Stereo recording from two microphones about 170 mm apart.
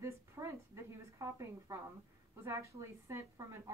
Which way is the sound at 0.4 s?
15° right (ahead or behind).